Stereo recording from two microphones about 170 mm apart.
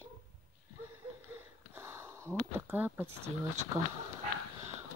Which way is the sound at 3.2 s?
40° right (ahead or behind).